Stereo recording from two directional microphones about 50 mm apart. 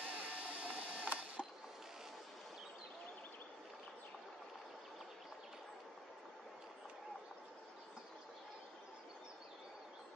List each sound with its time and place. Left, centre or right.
0.0 s printer: right